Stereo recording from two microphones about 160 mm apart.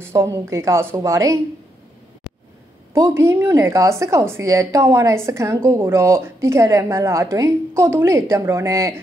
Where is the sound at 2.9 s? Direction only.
15° right (ahead or behind).